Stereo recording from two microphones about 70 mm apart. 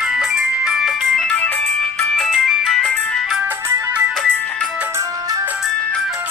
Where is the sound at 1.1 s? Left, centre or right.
Centre.